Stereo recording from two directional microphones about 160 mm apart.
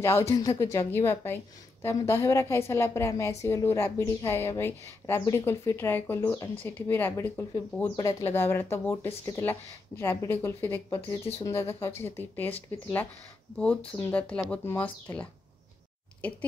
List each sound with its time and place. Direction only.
0.0 s a woman's voice: 15° left (ahead or behind)
8.3 s a woman's voice: 15° left (ahead or behind)